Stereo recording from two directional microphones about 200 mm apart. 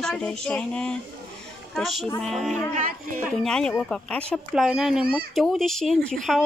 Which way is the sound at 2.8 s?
40° right (ahead or behind).